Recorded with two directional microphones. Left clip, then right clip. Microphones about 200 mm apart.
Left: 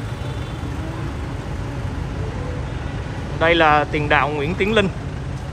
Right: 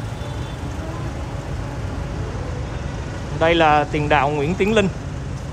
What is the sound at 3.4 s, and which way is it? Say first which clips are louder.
Speech: even; 15° right (ahead or behind).